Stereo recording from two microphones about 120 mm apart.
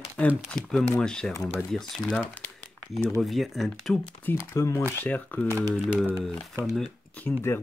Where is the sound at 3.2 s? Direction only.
Centre (ahead or behind).